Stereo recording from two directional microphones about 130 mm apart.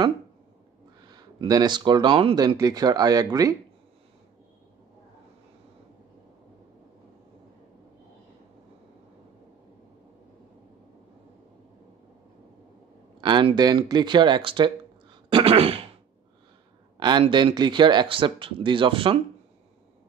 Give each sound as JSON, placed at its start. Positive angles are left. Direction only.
{"t": 1.0, "sound": "speech", "side_deg": -30}
{"t": 13.2, "sound": "speech", "side_deg": -40}
{"t": 15.2, "sound": "throat clearing", "side_deg": -45}
{"t": 17.3, "sound": "speech", "side_deg": -35}